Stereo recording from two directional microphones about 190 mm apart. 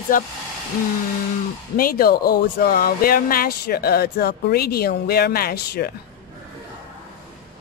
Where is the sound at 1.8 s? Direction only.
50° left (ahead or behind).